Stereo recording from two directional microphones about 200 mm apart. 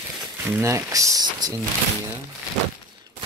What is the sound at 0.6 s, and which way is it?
Speech, 15° right (ahead or behind).